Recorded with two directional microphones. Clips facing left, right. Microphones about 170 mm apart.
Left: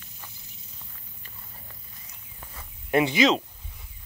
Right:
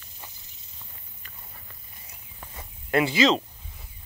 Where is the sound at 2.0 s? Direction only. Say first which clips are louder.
Right 3 dB; 25° right (ahead or behind).